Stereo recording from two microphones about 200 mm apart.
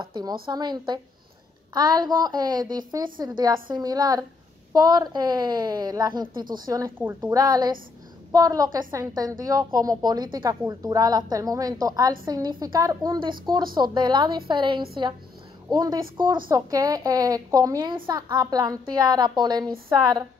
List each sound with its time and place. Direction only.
0.0 s a woman's voice: 20° right (ahead or behind)